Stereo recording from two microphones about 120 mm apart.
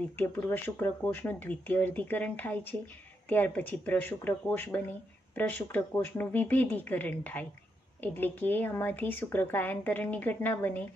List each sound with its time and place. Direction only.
0.2 s speech: 15° left (ahead or behind)